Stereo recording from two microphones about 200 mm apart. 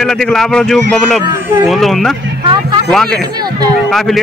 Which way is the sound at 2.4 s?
25° right (ahead or behind).